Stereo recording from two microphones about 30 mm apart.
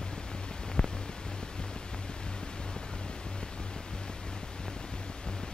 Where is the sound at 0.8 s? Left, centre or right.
Left.